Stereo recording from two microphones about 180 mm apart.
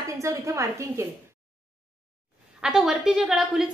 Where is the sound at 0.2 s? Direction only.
15° right (ahead or behind).